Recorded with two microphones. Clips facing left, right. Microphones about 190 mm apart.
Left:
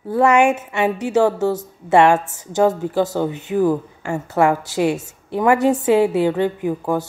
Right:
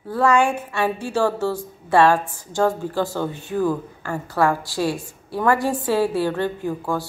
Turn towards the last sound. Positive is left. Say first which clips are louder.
# left 4 dB
turn(degrees=20)  # may be behind; listen again after turning